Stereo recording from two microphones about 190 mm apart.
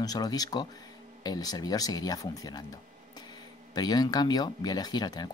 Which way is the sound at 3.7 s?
20° left (ahead or behind).